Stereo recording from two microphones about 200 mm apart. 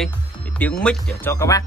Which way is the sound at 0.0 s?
5° left (ahead or behind).